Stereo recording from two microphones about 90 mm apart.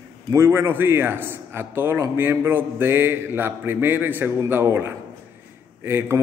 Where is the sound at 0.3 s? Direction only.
30° right (ahead or behind).